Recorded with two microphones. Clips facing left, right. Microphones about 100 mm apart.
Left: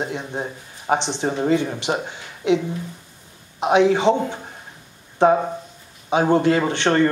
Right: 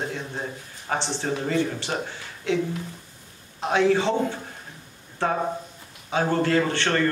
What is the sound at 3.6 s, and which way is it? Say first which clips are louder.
Speech: left 5 dB; 20° left (ahead or behind).